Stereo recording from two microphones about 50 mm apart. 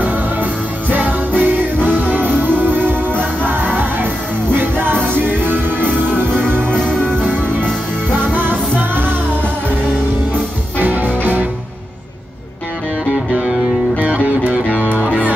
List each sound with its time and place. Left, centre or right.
0.0 s music: right
8.3 s music: right
10.8 s music: right
13.3 s music: centre
13.9 s music: right